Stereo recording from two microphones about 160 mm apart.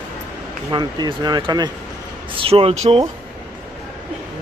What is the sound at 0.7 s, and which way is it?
Speech, 30° right (ahead or behind).